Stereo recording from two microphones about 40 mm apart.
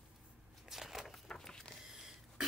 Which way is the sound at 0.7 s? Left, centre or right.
Centre.